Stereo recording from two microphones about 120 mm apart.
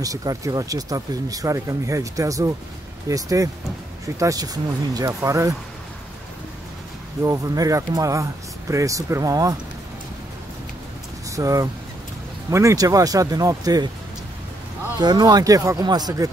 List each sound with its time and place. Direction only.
0.0 s speech: 30° right (ahead or behind)
7.2 s speech: 30° right (ahead or behind)
11.2 s speech: 30° right (ahead or behind)
15.0 s speech: 35° right (ahead or behind)